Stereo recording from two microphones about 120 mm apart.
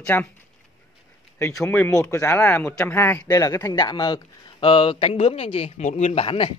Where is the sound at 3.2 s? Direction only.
30° left (ahead or behind); by 6.2 s 75° left (ahead or behind).